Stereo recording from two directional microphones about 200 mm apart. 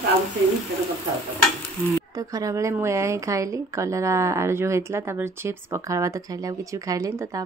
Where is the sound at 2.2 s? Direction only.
15° right (ahead or behind).